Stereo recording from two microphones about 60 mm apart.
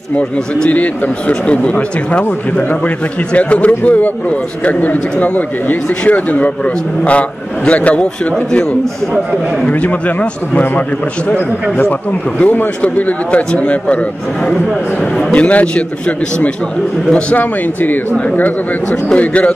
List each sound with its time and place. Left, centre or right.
0.7 s a man's voice: left
9.1 s speech: centre
9.7 s a man's voice: left
12.4 s a man's voice: left
15.1 s a man's voice: left
17.1 s a man's voice: left